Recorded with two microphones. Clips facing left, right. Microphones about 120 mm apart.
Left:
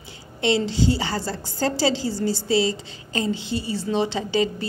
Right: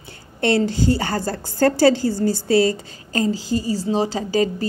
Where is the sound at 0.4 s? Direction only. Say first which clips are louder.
Right 3 dB; 50° right (ahead or behind).